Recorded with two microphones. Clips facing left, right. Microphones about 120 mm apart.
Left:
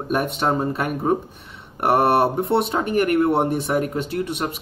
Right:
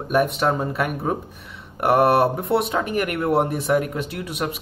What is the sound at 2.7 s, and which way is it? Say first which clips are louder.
Speech: left 4 dB; 35° left (ahead or behind).